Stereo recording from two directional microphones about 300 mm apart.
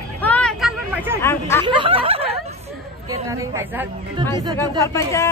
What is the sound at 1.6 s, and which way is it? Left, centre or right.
Speech, centre.